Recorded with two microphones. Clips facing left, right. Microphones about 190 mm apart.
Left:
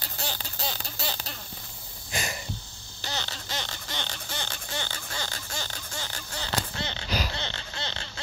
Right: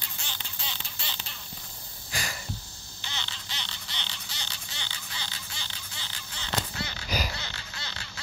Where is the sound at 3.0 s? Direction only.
40° left (ahead or behind).